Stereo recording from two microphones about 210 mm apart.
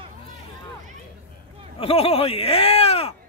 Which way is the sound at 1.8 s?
25° left (ahead or behind).